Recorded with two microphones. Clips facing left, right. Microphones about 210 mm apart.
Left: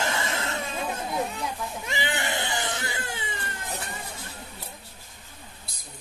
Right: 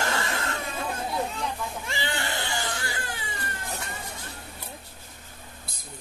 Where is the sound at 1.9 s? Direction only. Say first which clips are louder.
Left 3 dB; 20° left (ahead or behind).